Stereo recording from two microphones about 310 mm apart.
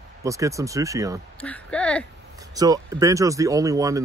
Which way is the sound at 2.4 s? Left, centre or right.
Centre.